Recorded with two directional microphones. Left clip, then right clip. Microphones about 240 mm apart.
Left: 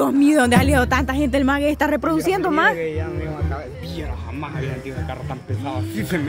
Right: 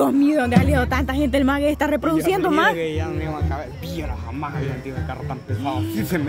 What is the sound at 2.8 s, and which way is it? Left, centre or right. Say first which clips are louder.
Speech: even; right.